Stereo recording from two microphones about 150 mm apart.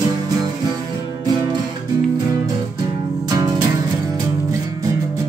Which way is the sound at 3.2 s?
25° right (ahead or behind).